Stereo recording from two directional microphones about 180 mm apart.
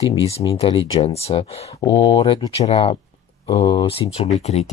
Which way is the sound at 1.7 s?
20° left (ahead or behind).